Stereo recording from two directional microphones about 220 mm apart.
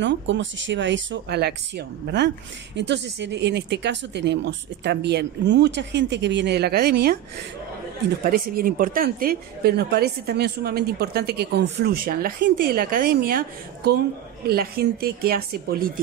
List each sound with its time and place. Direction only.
0.0 s speech: 55° right (ahead or behind)
8.3 s speech: 40° right (ahead or behind)